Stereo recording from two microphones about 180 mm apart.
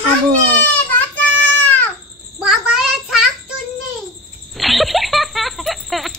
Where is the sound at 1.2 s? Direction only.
10° left (ahead or behind).